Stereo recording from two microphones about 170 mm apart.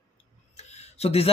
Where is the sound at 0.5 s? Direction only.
40° left (ahead or behind).